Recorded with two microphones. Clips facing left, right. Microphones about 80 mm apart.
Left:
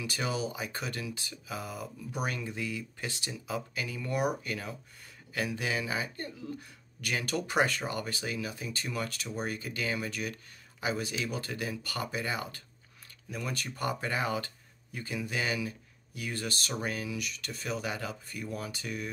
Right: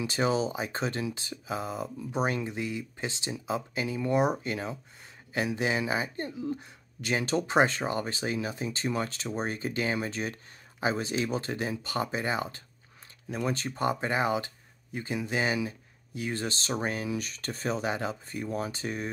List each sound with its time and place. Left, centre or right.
0.0 s speech: right